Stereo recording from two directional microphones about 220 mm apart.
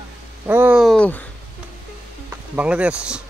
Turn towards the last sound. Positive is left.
turn(degrees=-5)  # may be behind; listen again after turning